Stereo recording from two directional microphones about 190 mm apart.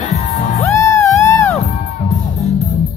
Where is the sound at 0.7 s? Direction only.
15° left (ahead or behind).